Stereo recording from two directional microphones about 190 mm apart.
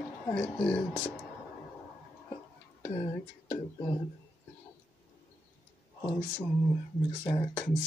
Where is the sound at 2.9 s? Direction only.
25° left (ahead or behind).